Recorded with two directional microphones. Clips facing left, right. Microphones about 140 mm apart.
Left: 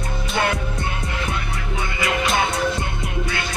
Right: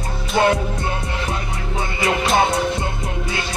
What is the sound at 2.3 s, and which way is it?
Music, 25° right (ahead or behind).